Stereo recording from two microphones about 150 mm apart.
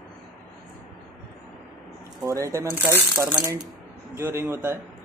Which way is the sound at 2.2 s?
20° right (ahead or behind).